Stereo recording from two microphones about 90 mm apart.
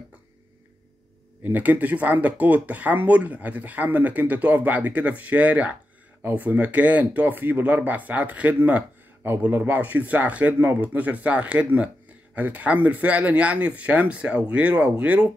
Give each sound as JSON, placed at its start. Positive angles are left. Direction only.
{"t": 1.4, "sound": "speech", "side_deg": -20}